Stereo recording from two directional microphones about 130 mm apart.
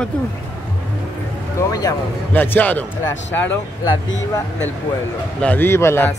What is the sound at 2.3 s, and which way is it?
Speech, 15° left (ahead or behind).